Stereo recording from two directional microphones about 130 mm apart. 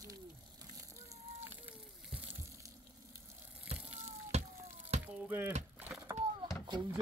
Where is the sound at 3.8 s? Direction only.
10° right (ahead or behind).